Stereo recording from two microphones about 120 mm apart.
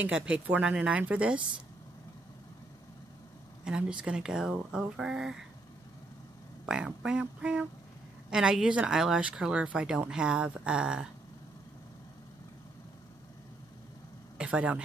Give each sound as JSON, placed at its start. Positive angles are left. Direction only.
{"t": 0.0, "sound": "speech", "side_deg": -10}
{"t": 3.6, "sound": "speech", "side_deg": -5}
{"t": 6.6, "sound": "speech", "side_deg": -5}
{"t": 14.4, "sound": "speech", "side_deg": -10}